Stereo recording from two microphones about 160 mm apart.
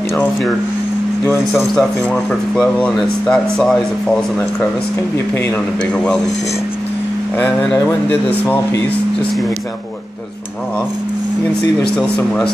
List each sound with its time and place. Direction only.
0.1 s speech: 5° left (ahead or behind)
1.8 s speech: 5° left (ahead or behind)
7.3 s speech: 10° left (ahead or behind)